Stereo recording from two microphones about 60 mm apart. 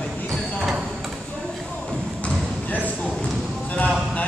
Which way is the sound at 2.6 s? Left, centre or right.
Left.